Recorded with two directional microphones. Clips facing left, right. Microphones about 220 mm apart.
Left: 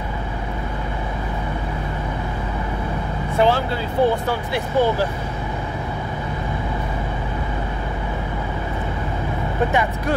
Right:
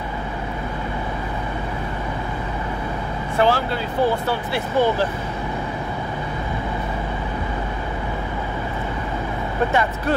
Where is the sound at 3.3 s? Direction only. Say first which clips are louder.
Left 1 dB; 20° left (ahead or behind).